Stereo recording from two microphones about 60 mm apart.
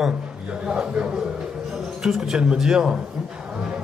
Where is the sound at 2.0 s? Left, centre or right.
Centre.